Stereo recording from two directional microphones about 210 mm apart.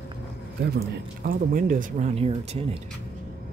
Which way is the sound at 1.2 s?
40° right (ahead or behind).